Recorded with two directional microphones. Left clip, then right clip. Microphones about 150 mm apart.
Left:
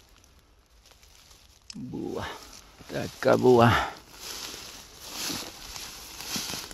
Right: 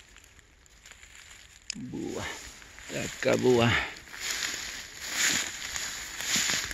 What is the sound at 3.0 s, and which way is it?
Speech, 25° left (ahead or behind).